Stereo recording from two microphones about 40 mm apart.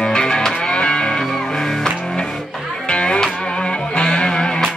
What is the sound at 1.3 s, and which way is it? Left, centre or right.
Music, centre.